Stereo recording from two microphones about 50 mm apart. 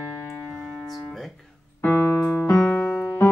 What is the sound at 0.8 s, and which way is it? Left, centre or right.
Guitar, centre.